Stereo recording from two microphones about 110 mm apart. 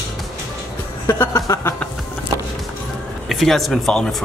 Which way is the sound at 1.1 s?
25° left (ahead or behind).